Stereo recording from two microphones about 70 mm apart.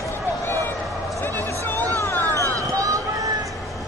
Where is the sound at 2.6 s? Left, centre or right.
Right.